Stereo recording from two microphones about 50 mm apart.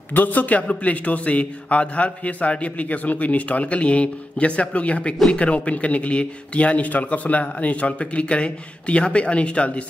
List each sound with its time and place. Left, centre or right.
0.1 s a man's voice: left